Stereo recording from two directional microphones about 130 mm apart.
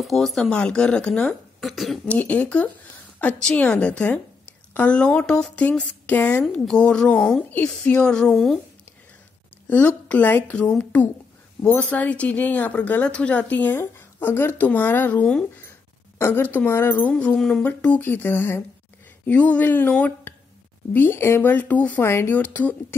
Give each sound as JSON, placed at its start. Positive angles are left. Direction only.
{"t": 0.0, "sound": "speech", "side_deg": 0}
{"t": 2.0, "sound": "speech", "side_deg": 10}
{"t": 6.4, "sound": "speech", "side_deg": 5}
{"t": 9.7, "sound": "a woman's voice", "side_deg": 10}